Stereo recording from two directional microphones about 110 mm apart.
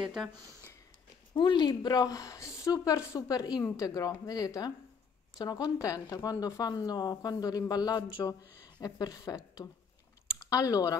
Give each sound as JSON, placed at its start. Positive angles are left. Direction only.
{"t": 0.0, "sound": "speech", "side_deg": -5}
{"t": 1.3, "sound": "speech", "side_deg": 45}